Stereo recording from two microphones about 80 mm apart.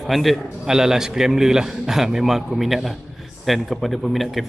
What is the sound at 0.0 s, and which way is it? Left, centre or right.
A man's voice, centre.